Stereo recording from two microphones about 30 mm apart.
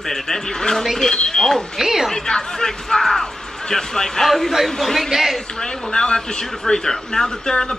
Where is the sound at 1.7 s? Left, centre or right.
Centre.